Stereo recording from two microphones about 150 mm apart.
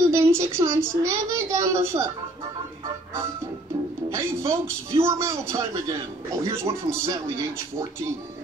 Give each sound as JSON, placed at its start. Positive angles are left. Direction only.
{"t": 0.1, "sound": "a woman's voice", "side_deg": -15}
{"t": 4.1, "sound": "speech", "side_deg": -15}